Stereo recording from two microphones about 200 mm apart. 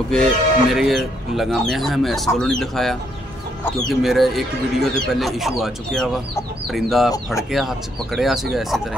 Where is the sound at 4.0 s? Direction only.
Centre (ahead or behind).